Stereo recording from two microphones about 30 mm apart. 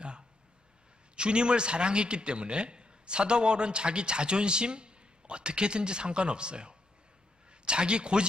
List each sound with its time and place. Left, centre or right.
1.1 s a man's voice: right